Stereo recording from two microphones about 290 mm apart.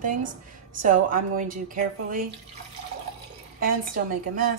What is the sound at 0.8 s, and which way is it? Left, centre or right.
A woman's voice, right.